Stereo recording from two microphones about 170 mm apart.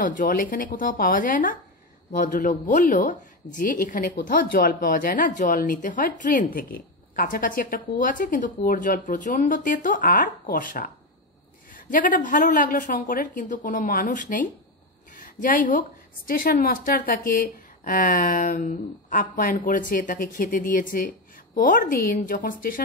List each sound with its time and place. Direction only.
0.0 s a woman's voice: 50° left (ahead or behind)